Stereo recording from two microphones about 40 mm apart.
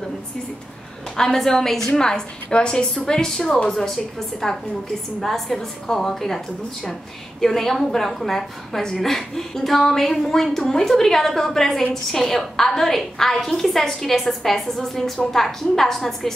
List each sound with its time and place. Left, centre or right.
1.1 s a woman's voice: centre